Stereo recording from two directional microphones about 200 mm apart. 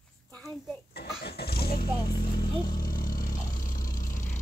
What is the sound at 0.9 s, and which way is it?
Vehicle, 50° left (ahead or behind).